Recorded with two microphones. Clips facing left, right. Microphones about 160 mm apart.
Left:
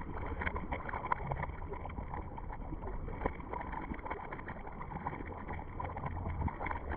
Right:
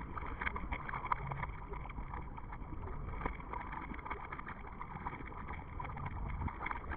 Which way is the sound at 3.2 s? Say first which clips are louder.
Left 6 dB; 50° left (ahead or behind).